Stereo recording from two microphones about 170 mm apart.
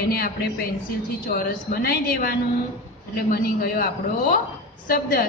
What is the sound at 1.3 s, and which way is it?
A woman's voice, 65° left (ahead or behind).